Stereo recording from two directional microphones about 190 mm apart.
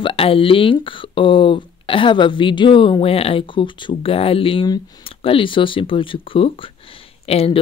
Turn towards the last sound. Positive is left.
turn(degrees=30)  # may be behind; listen again after turning